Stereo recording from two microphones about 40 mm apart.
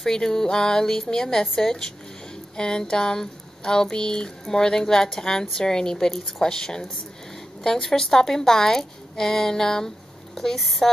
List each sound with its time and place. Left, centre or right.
0.0 s speech: centre